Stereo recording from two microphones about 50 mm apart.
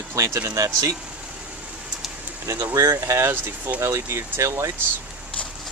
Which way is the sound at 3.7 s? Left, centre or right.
Right.